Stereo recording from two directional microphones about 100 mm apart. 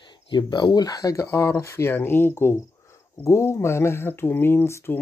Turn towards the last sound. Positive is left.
turn(degrees=25)  # may be behind; listen again after turning